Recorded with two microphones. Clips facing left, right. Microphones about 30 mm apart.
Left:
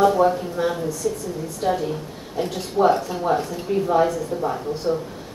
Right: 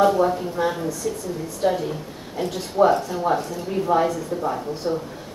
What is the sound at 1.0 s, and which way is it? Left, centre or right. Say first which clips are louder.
Speech: left 4 dB; centre.